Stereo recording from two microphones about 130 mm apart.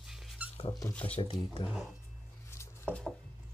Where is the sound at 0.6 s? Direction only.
35° left (ahead or behind).